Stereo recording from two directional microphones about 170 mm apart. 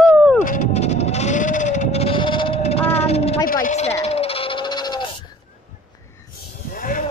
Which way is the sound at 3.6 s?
40° left (ahead or behind).